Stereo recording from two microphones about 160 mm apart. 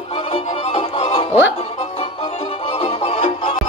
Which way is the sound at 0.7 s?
40° left (ahead or behind).